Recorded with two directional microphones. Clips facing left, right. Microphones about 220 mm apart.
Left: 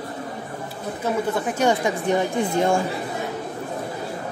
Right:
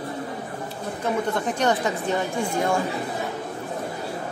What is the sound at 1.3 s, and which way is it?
Speech, 10° left (ahead or behind).